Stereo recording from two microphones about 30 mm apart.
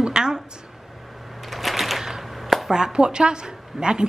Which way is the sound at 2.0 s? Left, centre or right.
Centre.